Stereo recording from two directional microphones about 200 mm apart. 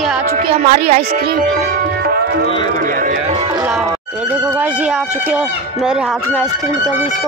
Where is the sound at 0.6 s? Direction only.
30° right (ahead or behind).